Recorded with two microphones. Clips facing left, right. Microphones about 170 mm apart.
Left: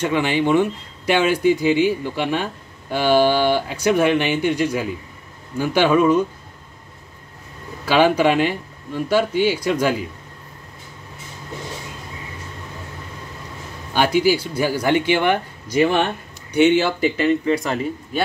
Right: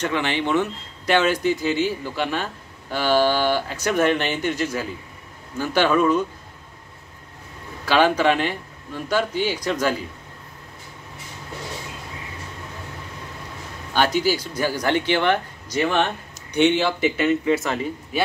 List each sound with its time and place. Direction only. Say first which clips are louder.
0.0 s speech: left 4 dB; 10° left (ahead or behind)
7.8 s speech: left 2 dB; 10° left (ahead or behind)
13.9 s speech: left 3 dB; 10° left (ahead or behind)
17.2 s speech: left 1 dB; 35° left (ahead or behind)
17.6 s speech: left 2 dB; 5° right (ahead or behind)